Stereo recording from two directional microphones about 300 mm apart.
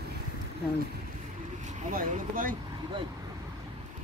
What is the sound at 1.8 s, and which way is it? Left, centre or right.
Speech, right.